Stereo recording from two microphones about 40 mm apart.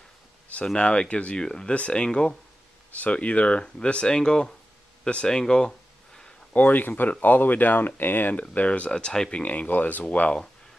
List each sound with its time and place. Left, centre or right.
0.7 s speech: left
1.7 s speech: left
3.0 s speech: left; by 5.7 s centre
5.7 s a sound: centre
6.5 s speech: left
8.4 s speech: left; by 9.3 s centre
9.3 s speech: left